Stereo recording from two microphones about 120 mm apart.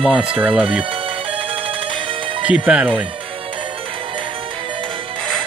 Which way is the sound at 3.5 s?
45° right (ahead or behind).